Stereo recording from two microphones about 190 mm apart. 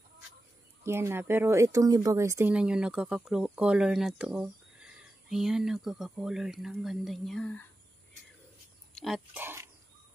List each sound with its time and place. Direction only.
0.8 s speech: 15° right (ahead or behind); by 7.6 s 5° left (ahead or behind)
8.9 s speech: centre (ahead or behind)